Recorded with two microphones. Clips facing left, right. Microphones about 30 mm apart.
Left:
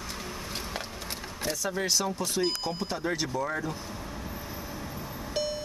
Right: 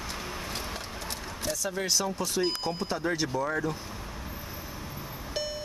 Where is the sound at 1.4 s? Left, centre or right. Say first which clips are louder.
Left 1 dB; centre.